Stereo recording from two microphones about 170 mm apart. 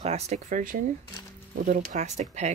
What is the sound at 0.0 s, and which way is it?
Speech, 40° right (ahead or behind).